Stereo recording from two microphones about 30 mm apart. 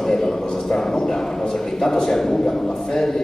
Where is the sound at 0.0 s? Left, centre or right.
Centre.